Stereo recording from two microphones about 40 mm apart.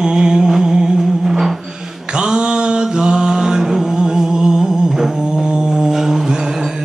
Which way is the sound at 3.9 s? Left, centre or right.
Centre.